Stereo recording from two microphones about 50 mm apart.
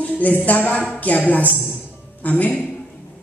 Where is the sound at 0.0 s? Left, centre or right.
Left.